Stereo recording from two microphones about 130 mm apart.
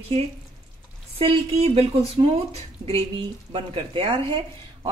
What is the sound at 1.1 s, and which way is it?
Speech, 45° right (ahead or behind).